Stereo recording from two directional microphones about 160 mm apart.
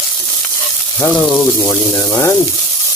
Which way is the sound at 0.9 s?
10° left (ahead or behind).